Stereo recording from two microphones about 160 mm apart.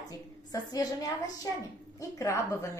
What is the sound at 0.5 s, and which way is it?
A woman's voice, 20° left (ahead or behind).